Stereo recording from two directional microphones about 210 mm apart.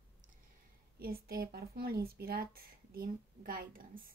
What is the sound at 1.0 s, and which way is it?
A woman's voice, 45° right (ahead or behind).